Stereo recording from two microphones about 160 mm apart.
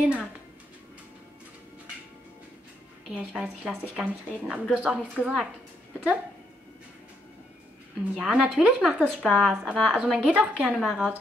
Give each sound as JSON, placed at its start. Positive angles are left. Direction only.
{"t": 0.0, "sound": "a woman's voice", "side_deg": -5}
{"t": 3.1, "sound": "a woman's voice", "side_deg": -5}
{"t": 8.2, "sound": "a woman's voice", "side_deg": -5}